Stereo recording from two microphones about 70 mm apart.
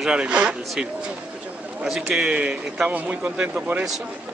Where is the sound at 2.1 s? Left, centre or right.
Centre.